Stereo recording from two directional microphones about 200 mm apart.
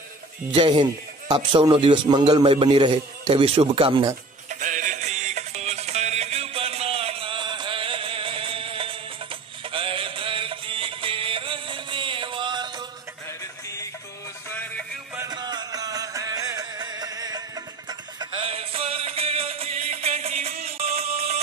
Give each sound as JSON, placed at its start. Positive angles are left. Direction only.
{"t": 0.5, "sound": "a man's voice", "side_deg": -25}
{"t": 4.5, "sound": "music", "side_deg": -40}
{"t": 14.5, "sound": "music", "side_deg": 10}
{"t": 15.1, "sound": "music", "side_deg": -20}